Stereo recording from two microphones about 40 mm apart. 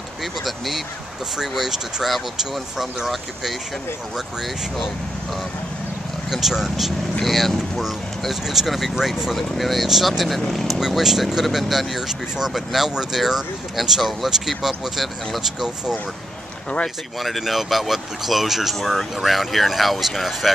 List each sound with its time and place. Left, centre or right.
0.2 s speech: centre
6.3 s speech: centre
11.0 s speech: centre
15.6 s speech: centre
17.2 s speech: centre
18.8 s speech: centre